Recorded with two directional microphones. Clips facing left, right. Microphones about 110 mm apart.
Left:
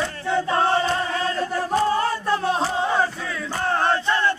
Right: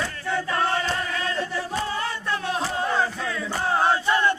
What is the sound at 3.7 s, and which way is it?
Battle cry, 10° right (ahead or behind).